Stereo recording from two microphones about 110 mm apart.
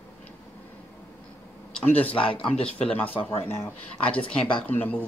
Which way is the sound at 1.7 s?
15° left (ahead or behind).